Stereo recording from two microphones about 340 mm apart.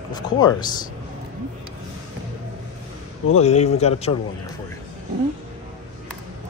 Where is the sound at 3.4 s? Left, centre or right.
Centre.